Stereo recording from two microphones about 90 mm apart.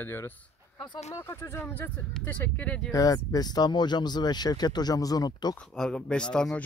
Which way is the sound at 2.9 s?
40° left (ahead or behind).